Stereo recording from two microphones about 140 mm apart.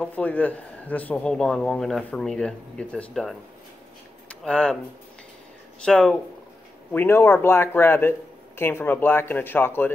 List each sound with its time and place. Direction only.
0.0 s speech: 10° left (ahead or behind)
5.9 s speech: 5° left (ahead or behind)